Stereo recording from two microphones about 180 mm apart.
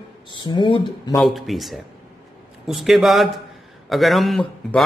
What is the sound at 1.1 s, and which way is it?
Speech, centre (ahead or behind).